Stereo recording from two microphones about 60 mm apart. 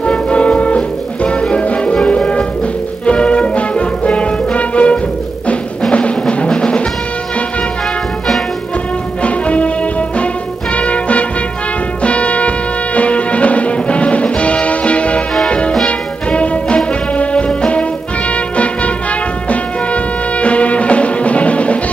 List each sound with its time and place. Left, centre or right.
0.0 s music: centre
9.2 s music: left